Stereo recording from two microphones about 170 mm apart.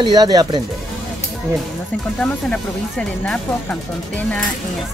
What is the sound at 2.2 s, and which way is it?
Speech, 5° left (ahead or behind).